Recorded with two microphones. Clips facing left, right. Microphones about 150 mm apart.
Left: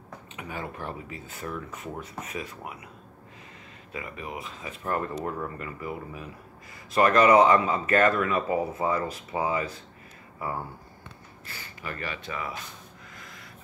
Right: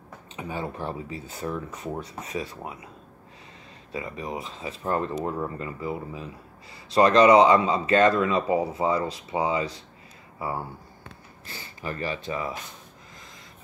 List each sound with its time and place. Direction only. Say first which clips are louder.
0.4 s speech: right 4 dB; 30° right (ahead or behind)
3.9 s speech: right 4 dB; 30° right (ahead or behind)
11.4 s speech: right 4 dB; 30° right (ahead or behind)